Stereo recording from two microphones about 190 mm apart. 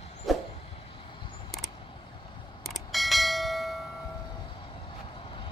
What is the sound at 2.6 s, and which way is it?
Bell, centre (ahead or behind).